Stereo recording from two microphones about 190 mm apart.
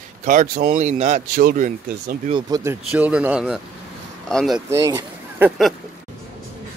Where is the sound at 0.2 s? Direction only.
40° right (ahead or behind).